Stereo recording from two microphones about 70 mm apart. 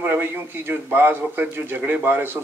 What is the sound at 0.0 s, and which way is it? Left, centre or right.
A man's voice, right.